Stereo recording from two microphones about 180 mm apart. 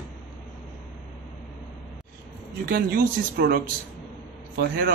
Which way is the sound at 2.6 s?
55° right (ahead or behind).